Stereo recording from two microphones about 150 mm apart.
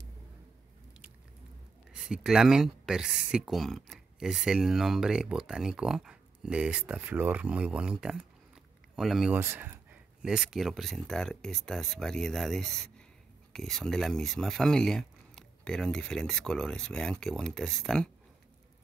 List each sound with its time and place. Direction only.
1.9 s speech: 5° right (ahead or behind)
9.3 s speech: 15° right (ahead or behind)
10.2 s speech: 5° right (ahead or behind)